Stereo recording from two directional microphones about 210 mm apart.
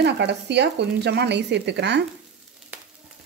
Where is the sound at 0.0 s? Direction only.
55° right (ahead or behind).